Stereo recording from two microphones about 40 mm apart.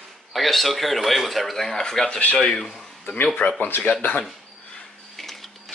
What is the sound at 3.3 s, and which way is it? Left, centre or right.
Speech, left.